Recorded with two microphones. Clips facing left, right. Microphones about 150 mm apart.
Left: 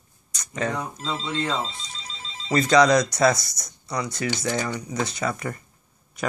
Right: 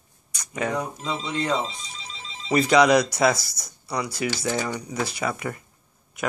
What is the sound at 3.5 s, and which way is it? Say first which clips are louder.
Speech: right 1 dB; 5° right (ahead or behind).